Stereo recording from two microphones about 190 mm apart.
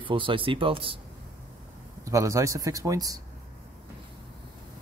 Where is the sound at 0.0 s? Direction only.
25° right (ahead or behind).